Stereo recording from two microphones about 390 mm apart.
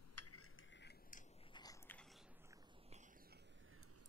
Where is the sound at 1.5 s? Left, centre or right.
Centre.